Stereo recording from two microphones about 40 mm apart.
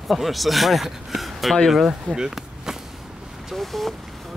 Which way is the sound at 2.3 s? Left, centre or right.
Centre.